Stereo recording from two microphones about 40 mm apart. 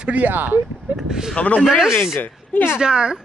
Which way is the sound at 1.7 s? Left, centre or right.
Centre.